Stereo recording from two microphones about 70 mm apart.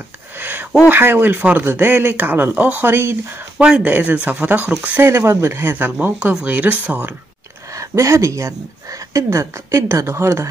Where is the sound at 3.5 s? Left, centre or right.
Centre.